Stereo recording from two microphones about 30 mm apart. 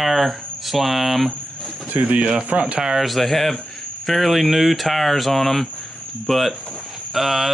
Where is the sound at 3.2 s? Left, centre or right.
Centre.